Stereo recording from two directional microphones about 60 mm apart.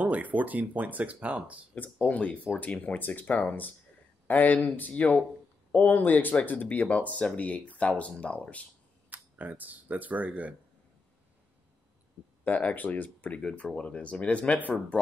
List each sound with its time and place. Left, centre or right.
0.0 s speech: right
1.8 s speech: left
9.1 s speech: right
12.4 s speech: left
13.4 s speech: centre